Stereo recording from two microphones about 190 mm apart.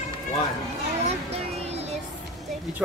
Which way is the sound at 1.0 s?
35° right (ahead or behind).